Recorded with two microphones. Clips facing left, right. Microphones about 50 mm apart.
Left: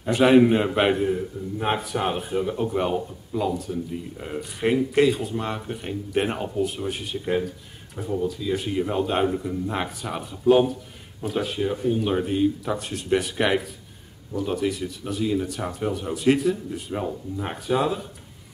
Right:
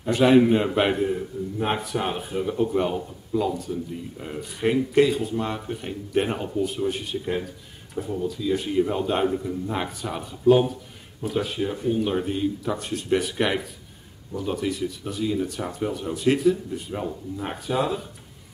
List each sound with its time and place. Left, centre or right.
0.0 s a man's voice: centre